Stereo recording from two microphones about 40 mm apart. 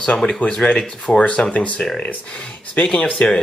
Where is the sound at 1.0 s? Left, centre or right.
Left.